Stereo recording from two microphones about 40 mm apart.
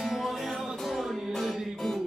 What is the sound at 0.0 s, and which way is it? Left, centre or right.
Music, centre.